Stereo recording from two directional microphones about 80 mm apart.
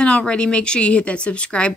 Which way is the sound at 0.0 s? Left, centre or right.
Centre.